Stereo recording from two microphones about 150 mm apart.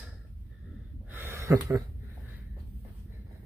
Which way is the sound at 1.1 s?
15° right (ahead or behind).